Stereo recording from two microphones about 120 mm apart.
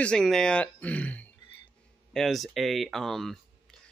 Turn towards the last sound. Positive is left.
turn(degrees=0)  # may be behind; listen again after turning